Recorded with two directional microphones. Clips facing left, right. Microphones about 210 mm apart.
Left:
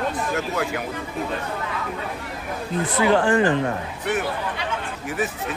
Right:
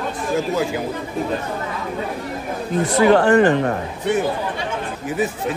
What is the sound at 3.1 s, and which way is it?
Speech, 65° right (ahead or behind).